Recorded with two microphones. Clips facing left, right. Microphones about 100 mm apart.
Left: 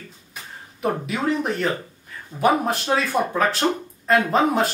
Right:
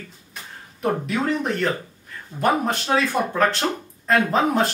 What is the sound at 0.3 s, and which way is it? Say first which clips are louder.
Speech: left 3 dB; 5° left (ahead or behind).